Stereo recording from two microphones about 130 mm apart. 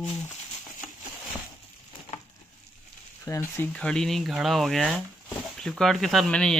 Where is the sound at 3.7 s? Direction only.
5° left (ahead or behind).